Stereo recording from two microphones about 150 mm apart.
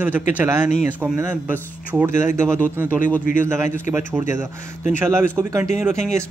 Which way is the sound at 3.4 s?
15° right (ahead or behind).